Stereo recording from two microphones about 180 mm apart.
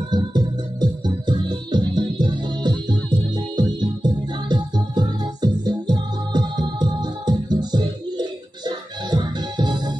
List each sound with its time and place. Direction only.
0.1 s music: 25° right (ahead or behind)